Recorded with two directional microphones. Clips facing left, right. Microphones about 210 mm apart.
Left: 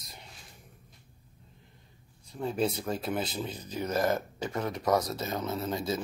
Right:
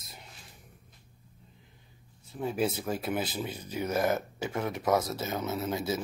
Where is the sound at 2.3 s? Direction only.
5° right (ahead or behind).